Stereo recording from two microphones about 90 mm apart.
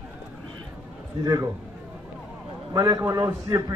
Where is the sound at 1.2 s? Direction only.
40° right (ahead or behind).